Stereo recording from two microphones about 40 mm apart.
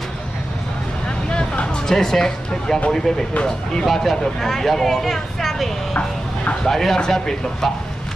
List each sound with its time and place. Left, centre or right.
1.0 s vehicle: left
1.9 s speech: centre